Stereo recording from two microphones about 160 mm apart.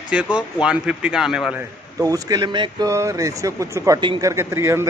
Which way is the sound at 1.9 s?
20° right (ahead or behind).